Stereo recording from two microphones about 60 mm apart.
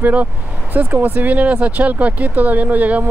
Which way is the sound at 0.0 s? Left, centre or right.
Right.